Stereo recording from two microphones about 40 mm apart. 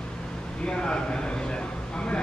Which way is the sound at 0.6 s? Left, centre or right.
Left.